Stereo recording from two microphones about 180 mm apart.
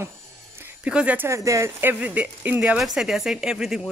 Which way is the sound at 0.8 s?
5° right (ahead or behind).